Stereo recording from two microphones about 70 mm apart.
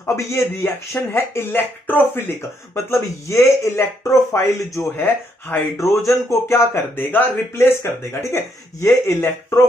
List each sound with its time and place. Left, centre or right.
0.0 s speech: left
4.9 s speech: left